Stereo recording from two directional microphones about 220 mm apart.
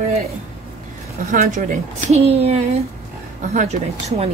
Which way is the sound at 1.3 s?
35° right (ahead or behind).